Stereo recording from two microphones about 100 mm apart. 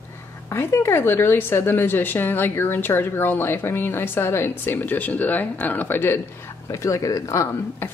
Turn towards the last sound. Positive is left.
turn(degrees=25)  # may be behind; listen again after turning